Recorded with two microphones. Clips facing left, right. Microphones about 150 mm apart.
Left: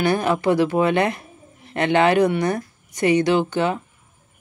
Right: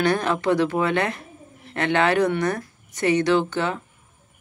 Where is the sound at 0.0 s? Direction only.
10° left (ahead or behind).